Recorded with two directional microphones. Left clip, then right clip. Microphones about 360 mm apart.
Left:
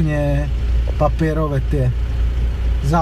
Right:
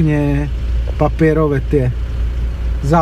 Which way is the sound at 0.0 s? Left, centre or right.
Centre.